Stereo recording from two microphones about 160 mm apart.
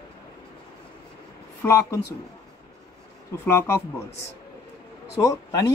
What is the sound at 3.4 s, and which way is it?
Speech, 15° left (ahead or behind).